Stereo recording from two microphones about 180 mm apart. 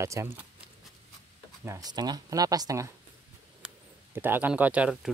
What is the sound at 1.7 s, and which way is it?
Speech, 20° right (ahead or behind).